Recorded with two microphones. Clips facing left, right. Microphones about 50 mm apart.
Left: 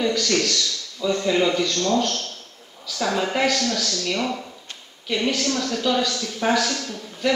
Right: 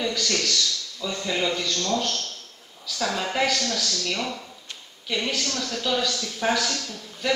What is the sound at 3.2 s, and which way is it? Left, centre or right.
A man's voice, centre.